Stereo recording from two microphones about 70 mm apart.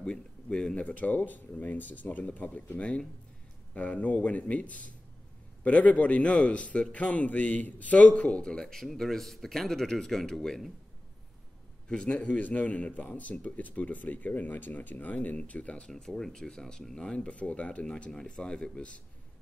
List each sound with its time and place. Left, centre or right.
0.0 s a man's voice: centre
11.9 s speech: centre
15.9 s a man's voice: centre